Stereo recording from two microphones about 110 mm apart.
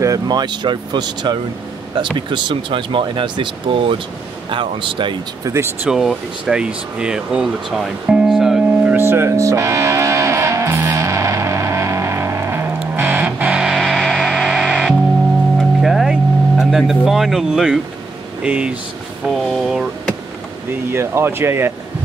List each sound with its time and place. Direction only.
0.0 s speech: 35° right (ahead or behind)
5.4 s speech: 25° right (ahead or behind)
5.9 s speech: 5° right (ahead or behind)
8.9 s music: 20° right (ahead or behind); by 15.0 s centre (ahead or behind)
15.8 s vehicle: 5° right (ahead or behind)
18.4 s speech: 10° right (ahead or behind)
19.2 s speech: centre (ahead or behind)
20.9 s speech: 25° right (ahead or behind)